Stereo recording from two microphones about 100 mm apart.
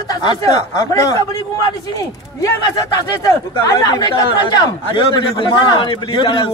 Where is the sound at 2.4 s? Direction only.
35° left (ahead or behind).